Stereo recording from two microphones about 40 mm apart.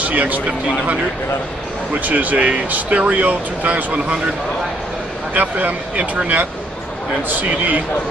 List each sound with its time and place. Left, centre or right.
0.0 s speech: right
2.0 s speech: right
5.3 s speech: right